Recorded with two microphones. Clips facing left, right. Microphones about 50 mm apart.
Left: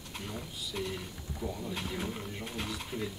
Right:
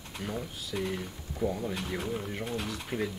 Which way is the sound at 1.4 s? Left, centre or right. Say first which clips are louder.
Right 8 dB; right.